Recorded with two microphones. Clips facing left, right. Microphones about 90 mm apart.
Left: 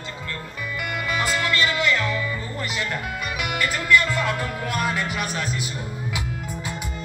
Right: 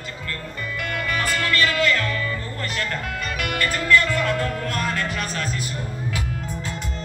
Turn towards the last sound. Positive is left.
turn(degrees=10)  # may be behind; listen again after turning